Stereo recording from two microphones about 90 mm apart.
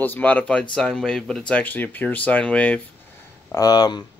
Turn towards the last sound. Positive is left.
turn(degrees=50)  # may be behind; listen again after turning